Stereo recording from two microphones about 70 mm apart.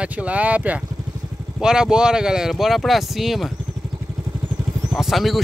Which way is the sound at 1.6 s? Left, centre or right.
Centre.